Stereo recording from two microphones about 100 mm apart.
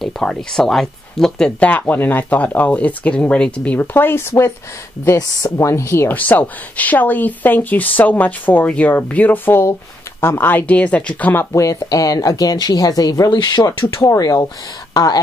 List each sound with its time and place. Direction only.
0.0 s speech: 5° left (ahead or behind)
11.5 s speech: 35° left (ahead or behind)